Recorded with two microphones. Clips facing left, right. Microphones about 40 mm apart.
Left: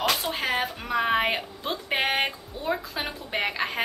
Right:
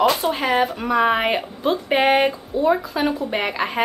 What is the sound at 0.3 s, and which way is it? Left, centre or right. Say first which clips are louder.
A woman's voice: right 7 dB; centre.